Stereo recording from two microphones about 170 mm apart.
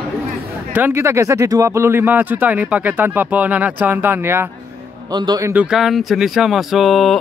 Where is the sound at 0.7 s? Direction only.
15° right (ahead or behind).